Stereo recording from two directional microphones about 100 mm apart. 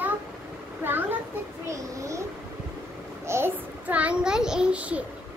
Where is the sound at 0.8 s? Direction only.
20° right (ahead or behind).